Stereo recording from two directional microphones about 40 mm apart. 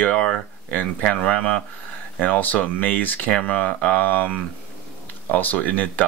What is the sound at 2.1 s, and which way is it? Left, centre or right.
Speech, left.